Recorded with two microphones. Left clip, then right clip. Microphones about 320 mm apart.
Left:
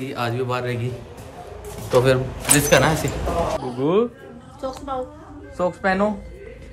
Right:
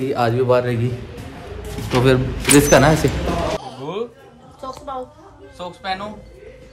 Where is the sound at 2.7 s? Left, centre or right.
Centre.